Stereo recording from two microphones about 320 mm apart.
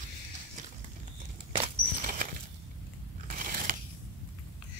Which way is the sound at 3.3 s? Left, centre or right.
Right.